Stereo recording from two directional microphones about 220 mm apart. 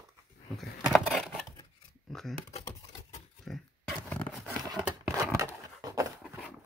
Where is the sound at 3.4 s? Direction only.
5° left (ahead or behind).